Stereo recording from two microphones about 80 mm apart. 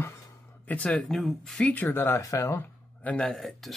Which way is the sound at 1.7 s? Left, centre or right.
Left.